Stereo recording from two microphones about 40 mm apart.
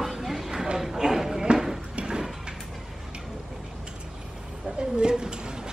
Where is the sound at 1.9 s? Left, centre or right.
Right.